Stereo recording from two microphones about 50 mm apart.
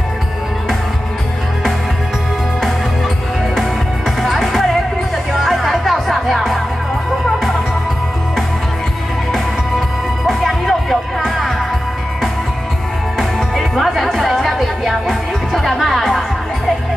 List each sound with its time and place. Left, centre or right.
4.2 s music: centre
9.3 s music: centre
13.2 s music: centre